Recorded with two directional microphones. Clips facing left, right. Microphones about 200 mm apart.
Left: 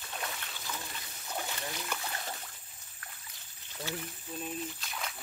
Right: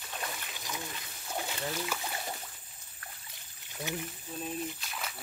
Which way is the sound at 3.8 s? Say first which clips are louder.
Right 2 dB; 15° right (ahead or behind).